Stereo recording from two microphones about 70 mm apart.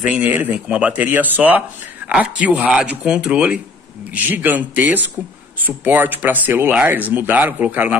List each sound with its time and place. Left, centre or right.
0.0 s speech: right